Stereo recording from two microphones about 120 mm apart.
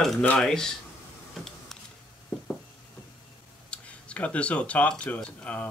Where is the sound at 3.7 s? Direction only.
10° left (ahead or behind).